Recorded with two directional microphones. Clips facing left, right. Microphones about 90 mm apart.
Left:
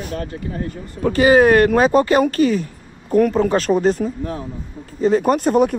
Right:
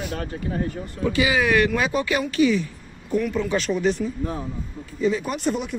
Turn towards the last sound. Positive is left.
turn(degrees=50)  # may be behind; listen again after turning